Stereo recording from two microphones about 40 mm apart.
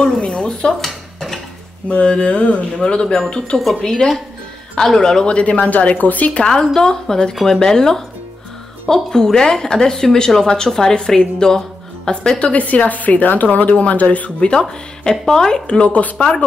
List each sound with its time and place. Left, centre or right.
0.0 s dishes: left
0.7 s a sound: centre
1.9 s speech: left
3.8 s speech: centre
5.2 s speech: left
6.5 s speech: centre; by 14.3 s left
14.5 s speech: centre
15.6 s speech: left